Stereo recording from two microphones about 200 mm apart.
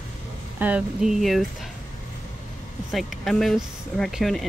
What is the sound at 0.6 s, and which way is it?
Speech, 5° right (ahead or behind).